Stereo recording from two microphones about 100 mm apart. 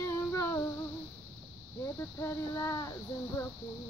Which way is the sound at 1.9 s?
25° left (ahead or behind).